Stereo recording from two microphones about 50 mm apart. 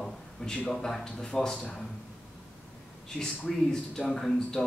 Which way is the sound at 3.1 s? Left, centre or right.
Centre.